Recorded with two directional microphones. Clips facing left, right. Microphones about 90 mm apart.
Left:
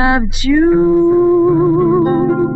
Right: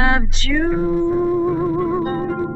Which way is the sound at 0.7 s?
25° left (ahead or behind).